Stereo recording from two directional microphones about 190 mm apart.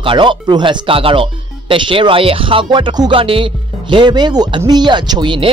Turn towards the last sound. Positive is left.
turn(degrees=-25)  # may be behind; listen again after turning